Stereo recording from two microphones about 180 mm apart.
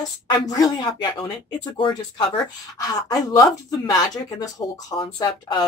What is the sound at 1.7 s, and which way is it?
Speech, 25° left (ahead or behind).